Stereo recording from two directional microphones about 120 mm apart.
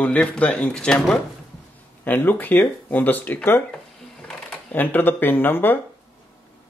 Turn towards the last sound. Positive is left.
turn(degrees=15)  # may be behind; listen again after turning